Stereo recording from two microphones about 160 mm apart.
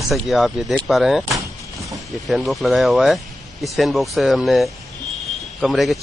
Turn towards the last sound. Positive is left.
turn(degrees=0)  # may be behind; listen again after turning